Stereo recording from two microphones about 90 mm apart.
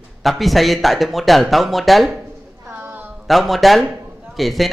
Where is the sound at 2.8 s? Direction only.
20° right (ahead or behind).